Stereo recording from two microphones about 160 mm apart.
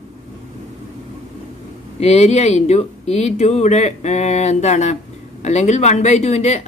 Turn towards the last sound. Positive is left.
turn(degrees=45)  # may be behind; listen again after turning